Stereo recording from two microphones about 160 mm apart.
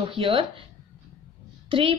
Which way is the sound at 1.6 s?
35° right (ahead or behind).